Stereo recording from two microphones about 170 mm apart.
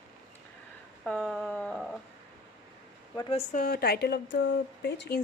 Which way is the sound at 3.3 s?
50° left (ahead or behind).